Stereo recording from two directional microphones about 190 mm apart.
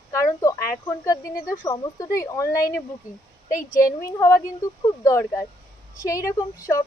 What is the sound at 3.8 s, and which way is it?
Speech, 15° left (ahead or behind).